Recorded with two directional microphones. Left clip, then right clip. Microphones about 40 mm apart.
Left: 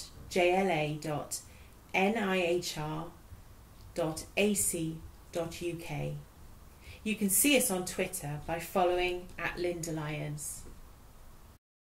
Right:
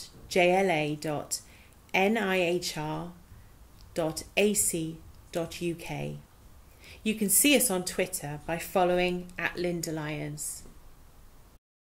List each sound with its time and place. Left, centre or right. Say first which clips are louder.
0.3 s speech: right 4 dB; right
3.9 s speech: right 4 dB; right